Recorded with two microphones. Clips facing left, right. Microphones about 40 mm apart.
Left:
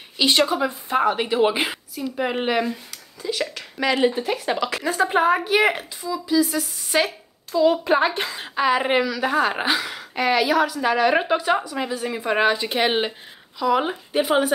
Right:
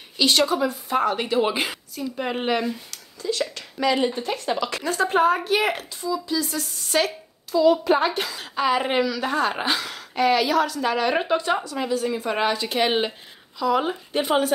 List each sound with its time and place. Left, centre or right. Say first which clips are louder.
0.2 s speech: left 1 dB; left
1.0 s a woman's voice: left 3 dB; centre
7.6 s speech: even; left
8.5 s a woman's voice: left 2 dB; centre